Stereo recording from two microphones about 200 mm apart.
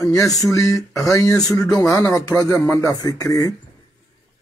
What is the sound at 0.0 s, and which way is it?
Speech, 15° left (ahead or behind).